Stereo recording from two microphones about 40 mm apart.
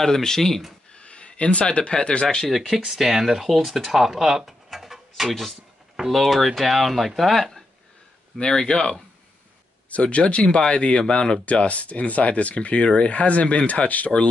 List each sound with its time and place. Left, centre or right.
0.0 s speech: centre
0.9 s a sound: left
2.5 s speech: centre
8.4 s speech: centre
9.8 s speech: left